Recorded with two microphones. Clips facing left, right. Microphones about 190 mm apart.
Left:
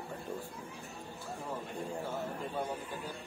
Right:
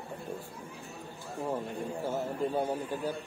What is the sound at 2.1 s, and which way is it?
Speech, 40° right (ahead or behind).